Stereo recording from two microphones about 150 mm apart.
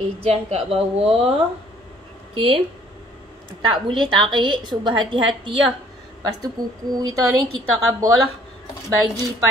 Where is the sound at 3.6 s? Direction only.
35° right (ahead or behind).